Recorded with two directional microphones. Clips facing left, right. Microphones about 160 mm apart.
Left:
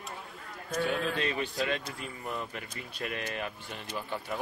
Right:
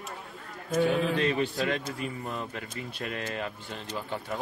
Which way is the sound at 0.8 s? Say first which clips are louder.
Right 5 dB; 15° right (ahead or behind).